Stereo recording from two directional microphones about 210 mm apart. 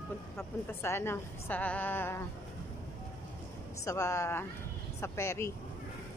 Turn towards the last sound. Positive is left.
turn(degrees=15)  # may be behind; listen again after turning